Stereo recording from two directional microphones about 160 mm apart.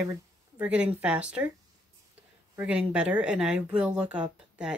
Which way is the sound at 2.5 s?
10° right (ahead or behind).